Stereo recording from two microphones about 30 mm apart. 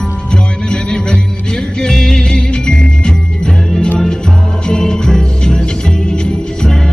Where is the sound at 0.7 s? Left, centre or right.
Left.